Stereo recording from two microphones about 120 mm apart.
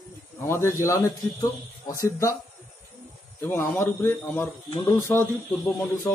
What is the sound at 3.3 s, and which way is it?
A man's voice, 20° left (ahead or behind).